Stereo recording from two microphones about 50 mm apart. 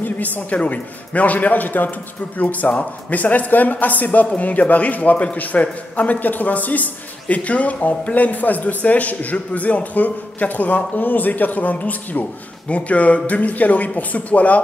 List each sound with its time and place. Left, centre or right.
0.5 s a man's voice: left